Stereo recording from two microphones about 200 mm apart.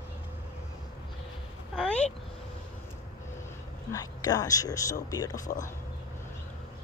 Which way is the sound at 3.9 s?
15° left (ahead or behind).